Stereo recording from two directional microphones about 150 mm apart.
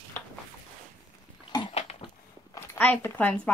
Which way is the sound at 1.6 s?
40° left (ahead or behind).